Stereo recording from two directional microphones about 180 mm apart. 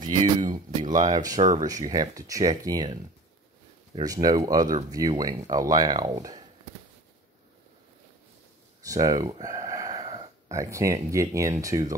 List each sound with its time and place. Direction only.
0.5 s speech: 25° right (ahead or behind)
8.8 s a sound: 20° right (ahead or behind)
10.6 s speech: 15° right (ahead or behind)